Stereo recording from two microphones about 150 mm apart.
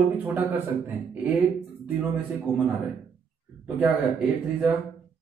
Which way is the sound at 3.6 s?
5° right (ahead or behind).